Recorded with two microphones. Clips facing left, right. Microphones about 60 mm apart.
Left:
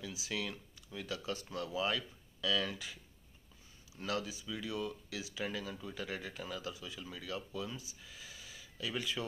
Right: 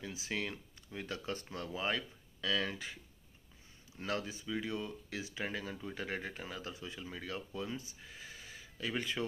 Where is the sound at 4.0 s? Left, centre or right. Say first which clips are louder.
Even; right.